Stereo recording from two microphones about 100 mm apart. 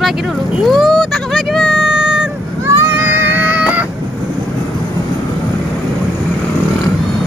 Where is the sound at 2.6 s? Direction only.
20° right (ahead or behind).